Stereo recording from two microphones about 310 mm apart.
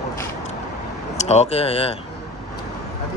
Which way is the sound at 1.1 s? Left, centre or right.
Left.